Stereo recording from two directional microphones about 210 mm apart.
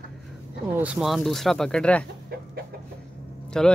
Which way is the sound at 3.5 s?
5° left (ahead or behind).